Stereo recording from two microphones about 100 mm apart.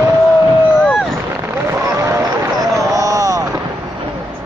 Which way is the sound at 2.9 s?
35° right (ahead or behind).